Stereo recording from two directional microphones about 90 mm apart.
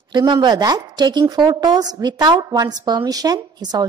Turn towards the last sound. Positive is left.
turn(degrees=-45)  # may be behind; listen again after turning